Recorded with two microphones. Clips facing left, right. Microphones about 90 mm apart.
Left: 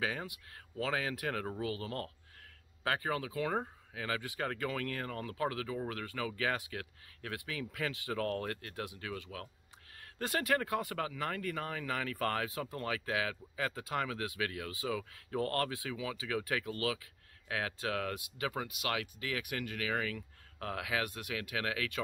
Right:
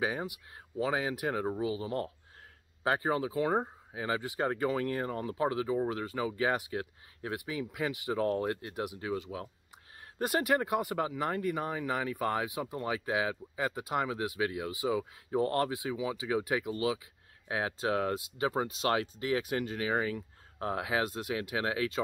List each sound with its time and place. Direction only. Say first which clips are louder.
0.0 s speech: right 4 dB; 20° right (ahead or behind)